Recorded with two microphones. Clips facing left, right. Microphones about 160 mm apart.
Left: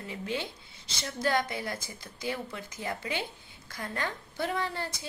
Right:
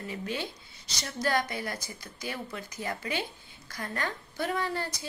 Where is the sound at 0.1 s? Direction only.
20° left (ahead or behind).